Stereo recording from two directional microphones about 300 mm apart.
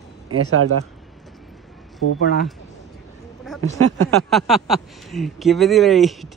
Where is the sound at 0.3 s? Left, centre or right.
Right.